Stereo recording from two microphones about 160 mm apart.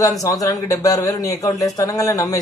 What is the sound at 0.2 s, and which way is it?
Speech, 20° left (ahead or behind).